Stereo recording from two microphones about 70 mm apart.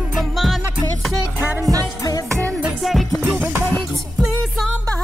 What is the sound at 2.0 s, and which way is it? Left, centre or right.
Music, left.